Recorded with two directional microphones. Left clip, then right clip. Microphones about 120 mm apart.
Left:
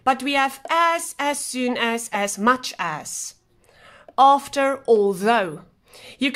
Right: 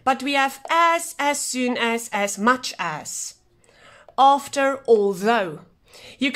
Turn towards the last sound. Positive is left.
turn(degrees=10)  # may be behind; listen again after turning